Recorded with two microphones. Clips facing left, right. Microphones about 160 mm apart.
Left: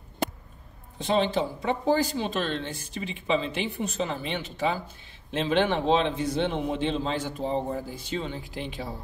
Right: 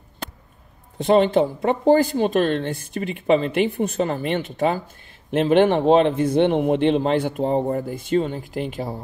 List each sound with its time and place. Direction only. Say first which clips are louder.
0.9 s speech: right 8 dB; 55° right (ahead or behind)